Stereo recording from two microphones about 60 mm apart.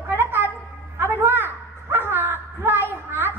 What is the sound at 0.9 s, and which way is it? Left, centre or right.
Dog, right.